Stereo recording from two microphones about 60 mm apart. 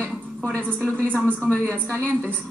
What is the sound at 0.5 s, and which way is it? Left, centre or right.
A woman's voice, left.